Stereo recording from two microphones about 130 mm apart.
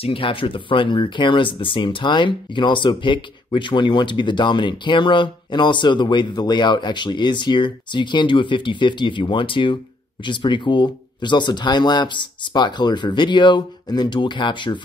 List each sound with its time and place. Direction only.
0.0 s speech: 45° left (ahead or behind)